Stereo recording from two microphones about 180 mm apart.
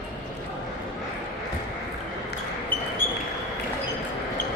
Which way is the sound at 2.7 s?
10° left (ahead or behind).